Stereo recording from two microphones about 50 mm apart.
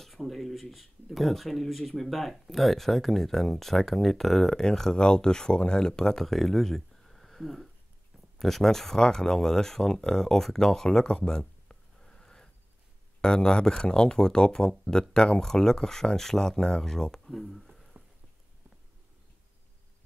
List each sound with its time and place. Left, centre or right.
0.0 s speech: centre
12.0 s sniff: centre
13.2 s speech: centre